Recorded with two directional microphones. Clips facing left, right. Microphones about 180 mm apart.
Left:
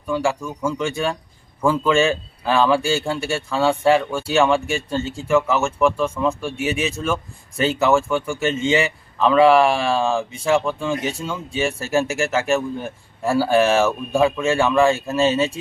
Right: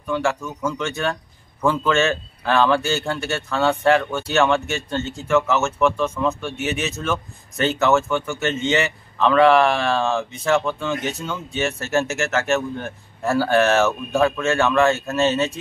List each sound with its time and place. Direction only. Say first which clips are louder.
0.0 s a man's voice: left 1 dB; 10° left (ahead or behind)
10.9 s speech: left 1 dB; 30° left (ahead or behind)
11.2 s a man's voice: left 1 dB; 10° left (ahead or behind)